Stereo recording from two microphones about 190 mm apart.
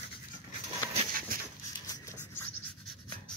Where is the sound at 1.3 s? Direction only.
50° right (ahead or behind).